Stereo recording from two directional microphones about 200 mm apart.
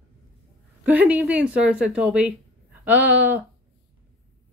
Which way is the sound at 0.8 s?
10° right (ahead or behind).